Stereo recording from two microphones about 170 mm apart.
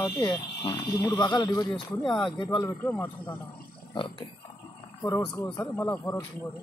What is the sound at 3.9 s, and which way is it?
Speech, 30° left (ahead or behind).